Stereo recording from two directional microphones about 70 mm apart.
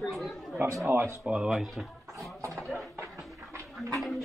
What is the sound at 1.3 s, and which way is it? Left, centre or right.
Speech, centre.